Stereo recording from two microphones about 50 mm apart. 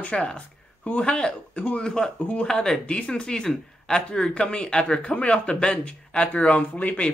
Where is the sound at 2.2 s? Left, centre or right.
Left.